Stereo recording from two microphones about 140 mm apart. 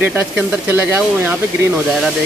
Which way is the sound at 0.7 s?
15° right (ahead or behind).